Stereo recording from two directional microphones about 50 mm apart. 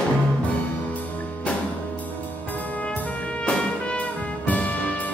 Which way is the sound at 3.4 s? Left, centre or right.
Left.